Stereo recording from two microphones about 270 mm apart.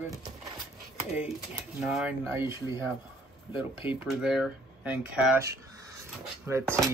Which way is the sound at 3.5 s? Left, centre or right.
Centre.